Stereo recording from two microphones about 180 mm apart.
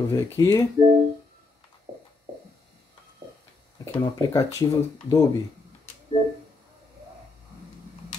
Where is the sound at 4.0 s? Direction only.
20° left (ahead or behind).